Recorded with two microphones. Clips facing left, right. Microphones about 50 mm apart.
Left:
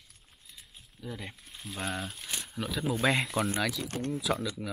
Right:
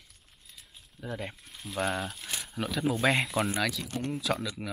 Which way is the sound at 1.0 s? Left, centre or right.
Centre.